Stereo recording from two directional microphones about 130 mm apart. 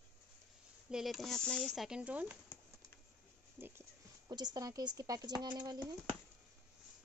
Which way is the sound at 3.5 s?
15° right (ahead or behind).